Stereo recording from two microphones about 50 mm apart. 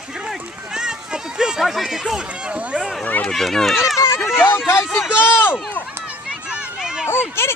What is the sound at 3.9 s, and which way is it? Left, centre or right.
Speech, left.